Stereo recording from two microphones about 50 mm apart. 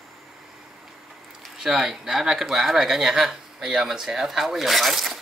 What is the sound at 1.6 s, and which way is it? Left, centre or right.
Speech, centre.